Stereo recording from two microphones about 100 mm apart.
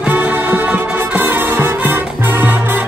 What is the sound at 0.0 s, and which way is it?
Music, 15° right (ahead or behind).